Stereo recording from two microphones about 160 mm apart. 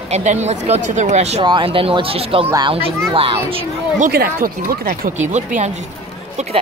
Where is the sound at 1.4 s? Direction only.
30° right (ahead or behind).